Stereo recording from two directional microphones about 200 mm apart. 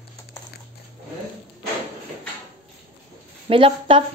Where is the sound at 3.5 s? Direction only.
25° right (ahead or behind).